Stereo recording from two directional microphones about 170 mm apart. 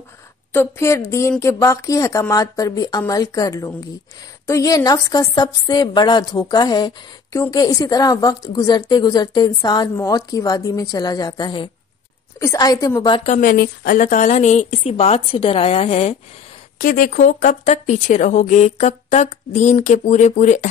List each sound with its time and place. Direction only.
0.5 s speech: 15° left (ahead or behind)
13.2 s a woman's voice: 50° left (ahead or behind)
16.7 s speech: 55° left (ahead or behind)